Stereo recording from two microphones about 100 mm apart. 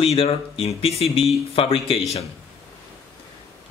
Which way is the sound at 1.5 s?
75° left (ahead or behind).